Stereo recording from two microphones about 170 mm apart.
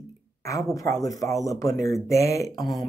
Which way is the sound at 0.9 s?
20° left (ahead or behind).